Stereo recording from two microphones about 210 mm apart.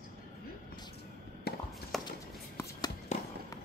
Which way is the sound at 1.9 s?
Centre (ahead or behind).